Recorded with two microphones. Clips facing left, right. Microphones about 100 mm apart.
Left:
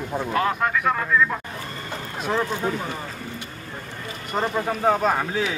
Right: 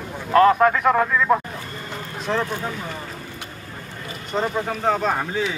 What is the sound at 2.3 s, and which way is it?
Speech, 15° left (ahead or behind).